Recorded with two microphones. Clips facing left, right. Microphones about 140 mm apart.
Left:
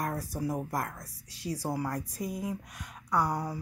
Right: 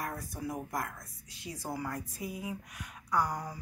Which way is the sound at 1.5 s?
35° left (ahead or behind).